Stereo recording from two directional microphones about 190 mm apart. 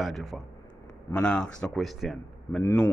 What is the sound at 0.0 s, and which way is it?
Speech, centre (ahead or behind).